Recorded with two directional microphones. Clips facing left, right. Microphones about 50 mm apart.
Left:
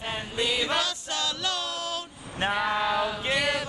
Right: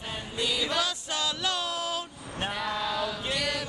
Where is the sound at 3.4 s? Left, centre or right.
Left.